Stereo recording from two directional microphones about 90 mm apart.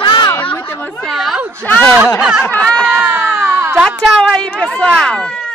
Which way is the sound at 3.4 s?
25° right (ahead or behind).